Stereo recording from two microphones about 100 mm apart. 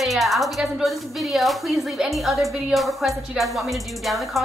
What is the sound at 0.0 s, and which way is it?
A woman's voice, centre (ahead or behind).